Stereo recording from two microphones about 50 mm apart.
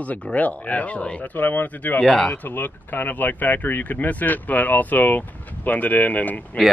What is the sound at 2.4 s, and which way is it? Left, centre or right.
Speech, left.